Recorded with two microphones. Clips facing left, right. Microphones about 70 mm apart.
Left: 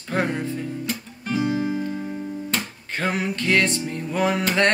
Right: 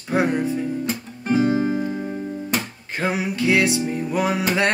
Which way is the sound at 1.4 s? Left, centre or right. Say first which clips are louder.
Right 3 dB; right.